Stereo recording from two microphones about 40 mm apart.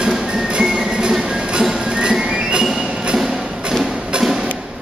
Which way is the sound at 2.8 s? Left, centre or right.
Centre.